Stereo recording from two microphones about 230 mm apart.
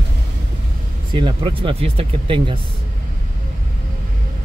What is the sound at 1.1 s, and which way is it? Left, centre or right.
Speech, right.